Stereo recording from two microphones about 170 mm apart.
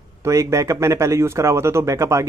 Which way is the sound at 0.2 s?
15° right (ahead or behind).